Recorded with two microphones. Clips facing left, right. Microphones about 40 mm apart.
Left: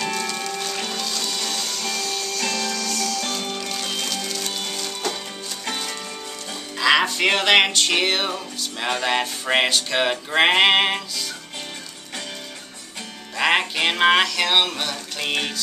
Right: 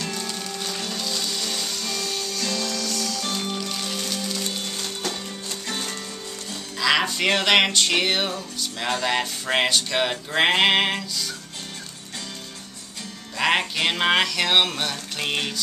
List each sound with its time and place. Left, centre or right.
1.1 s music: centre
1.5 s music: centre
3.5 s music: centre
5.7 s music: left
6.8 s music: centre
13.4 s music: centre